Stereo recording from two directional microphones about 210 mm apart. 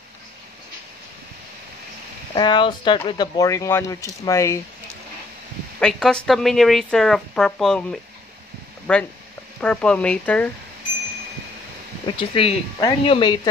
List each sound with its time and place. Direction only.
2.3 s speech: 20° left (ahead or behind)
5.8 s speech: 5° left (ahead or behind)
12.1 s speech: 25° left (ahead or behind)